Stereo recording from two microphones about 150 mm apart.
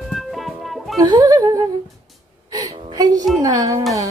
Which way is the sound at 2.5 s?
25° right (ahead or behind).